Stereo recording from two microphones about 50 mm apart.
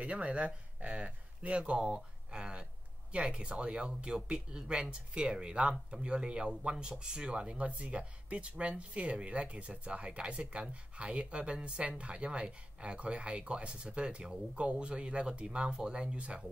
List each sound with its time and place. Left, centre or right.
0.0 s speech: right